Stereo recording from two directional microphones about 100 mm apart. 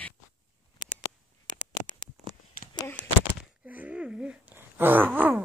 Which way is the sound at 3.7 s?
15° right (ahead or behind).